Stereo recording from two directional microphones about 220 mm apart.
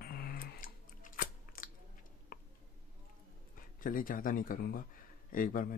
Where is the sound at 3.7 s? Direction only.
40° left (ahead or behind).